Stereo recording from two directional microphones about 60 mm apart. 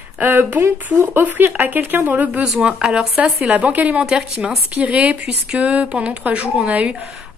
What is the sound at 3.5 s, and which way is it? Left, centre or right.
Speech, right.